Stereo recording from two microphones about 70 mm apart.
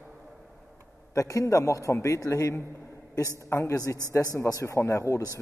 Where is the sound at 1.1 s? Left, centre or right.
Left.